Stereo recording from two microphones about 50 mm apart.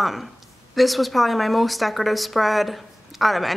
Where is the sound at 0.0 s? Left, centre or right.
Centre.